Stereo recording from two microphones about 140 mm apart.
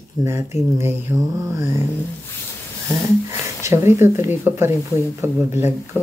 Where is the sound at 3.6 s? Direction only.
20° right (ahead or behind).